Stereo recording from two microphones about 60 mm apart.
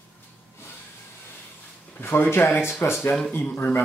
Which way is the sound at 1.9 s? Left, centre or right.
Left.